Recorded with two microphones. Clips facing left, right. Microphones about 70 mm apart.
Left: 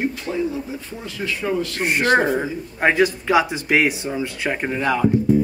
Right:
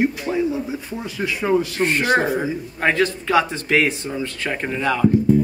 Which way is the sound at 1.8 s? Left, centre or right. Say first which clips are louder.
Left 1 dB; centre.